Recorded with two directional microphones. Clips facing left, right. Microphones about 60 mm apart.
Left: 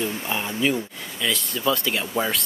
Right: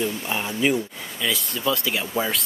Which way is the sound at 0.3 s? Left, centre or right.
Centre.